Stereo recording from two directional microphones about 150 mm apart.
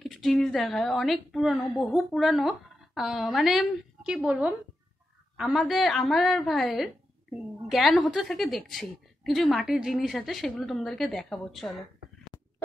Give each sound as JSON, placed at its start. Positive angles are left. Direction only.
{"t": 0.0, "sound": "a woman's voice", "side_deg": 0}
{"t": 2.1, "sound": "a woman's voice", "side_deg": 0}